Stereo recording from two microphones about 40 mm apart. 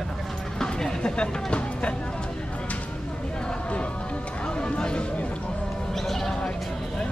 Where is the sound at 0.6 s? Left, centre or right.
Centre.